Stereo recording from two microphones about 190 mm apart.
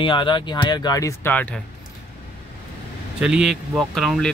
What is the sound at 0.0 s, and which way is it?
Speech, 25° left (ahead or behind).